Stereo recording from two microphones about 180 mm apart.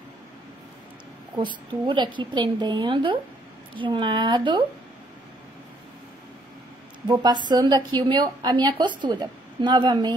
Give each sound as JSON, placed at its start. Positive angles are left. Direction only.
{"t": 1.3, "sound": "a woman's voice", "side_deg": -25}
{"t": 7.1, "sound": "a woman's voice", "side_deg": -25}